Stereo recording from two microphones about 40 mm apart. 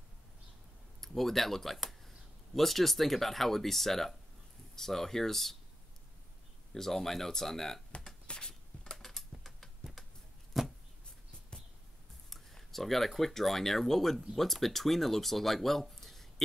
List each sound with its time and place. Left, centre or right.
1.0 s speech: centre
6.7 s speech: centre
8.3 s a sound: left
8.9 s typing: centre
10.6 s a sound: centre
12.3 s speech: centre